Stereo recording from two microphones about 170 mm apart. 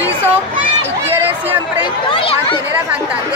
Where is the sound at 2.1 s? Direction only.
30° left (ahead or behind).